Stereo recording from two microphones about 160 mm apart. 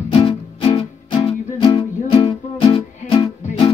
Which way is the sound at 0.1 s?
30° left (ahead or behind).